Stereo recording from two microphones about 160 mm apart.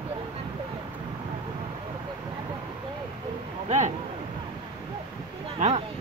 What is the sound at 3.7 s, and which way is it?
Speech, 45° right (ahead or behind).